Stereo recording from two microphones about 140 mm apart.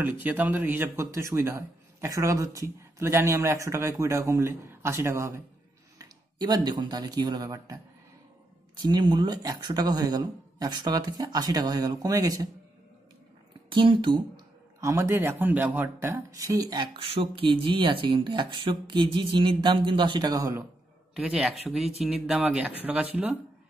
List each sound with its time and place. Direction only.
0.0 s speech: 15° right (ahead or behind)
8.8 s speech: 30° right (ahead or behind)
13.7 s speech: 35° right (ahead or behind)
14.8 s a man's voice: 20° right (ahead or behind)
21.1 s speech: 5° right (ahead or behind)